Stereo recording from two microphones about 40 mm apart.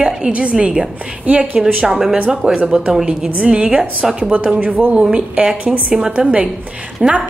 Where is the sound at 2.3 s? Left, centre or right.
Centre.